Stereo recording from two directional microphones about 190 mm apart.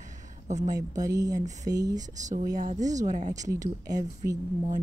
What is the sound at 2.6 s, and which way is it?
Speech, 40° right (ahead or behind).